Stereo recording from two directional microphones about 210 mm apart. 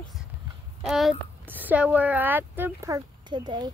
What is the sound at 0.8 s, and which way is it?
A woman's voice, centre (ahead or behind).